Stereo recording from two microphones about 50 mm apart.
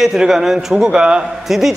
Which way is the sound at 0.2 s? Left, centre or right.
Centre.